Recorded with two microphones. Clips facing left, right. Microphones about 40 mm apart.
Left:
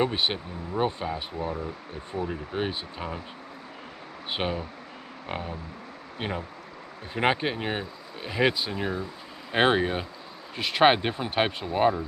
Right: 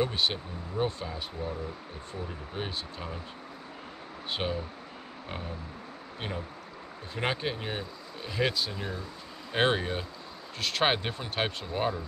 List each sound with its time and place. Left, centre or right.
0.0 s speech: left
4.3 s speech: left